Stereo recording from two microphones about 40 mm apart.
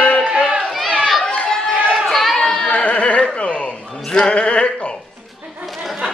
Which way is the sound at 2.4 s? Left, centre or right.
Centre.